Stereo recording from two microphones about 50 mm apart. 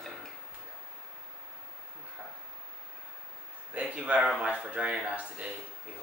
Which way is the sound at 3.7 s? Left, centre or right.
Right.